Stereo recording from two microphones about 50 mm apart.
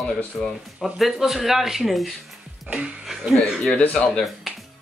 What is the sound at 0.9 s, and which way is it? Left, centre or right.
Speech, centre.